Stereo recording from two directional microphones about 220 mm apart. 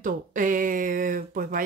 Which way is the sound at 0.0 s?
35° right (ahead or behind).